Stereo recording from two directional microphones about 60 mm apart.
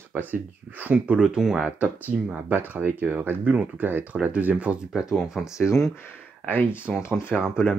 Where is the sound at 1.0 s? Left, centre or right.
Centre.